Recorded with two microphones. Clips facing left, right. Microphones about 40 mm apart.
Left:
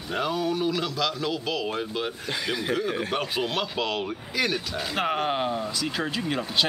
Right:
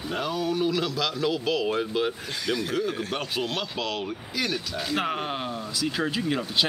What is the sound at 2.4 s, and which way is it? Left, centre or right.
Speech, centre.